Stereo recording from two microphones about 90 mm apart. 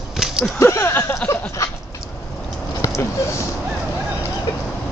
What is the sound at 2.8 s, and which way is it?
Speech, 35° left (ahead or behind).